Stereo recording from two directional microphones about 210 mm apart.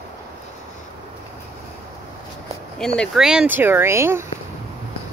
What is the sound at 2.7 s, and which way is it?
Speech, 5° left (ahead or behind).